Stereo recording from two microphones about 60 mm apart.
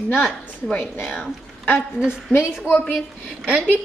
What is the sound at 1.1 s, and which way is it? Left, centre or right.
Speech, left.